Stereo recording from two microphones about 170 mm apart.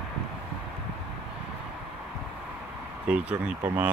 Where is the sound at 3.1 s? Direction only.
5° right (ahead or behind).